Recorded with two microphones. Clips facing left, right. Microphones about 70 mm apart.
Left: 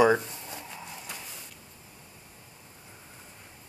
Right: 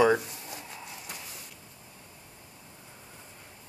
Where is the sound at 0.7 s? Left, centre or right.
Centre.